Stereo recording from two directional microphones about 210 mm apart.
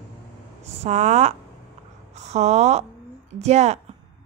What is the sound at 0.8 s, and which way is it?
Speech, 35° right (ahead or behind).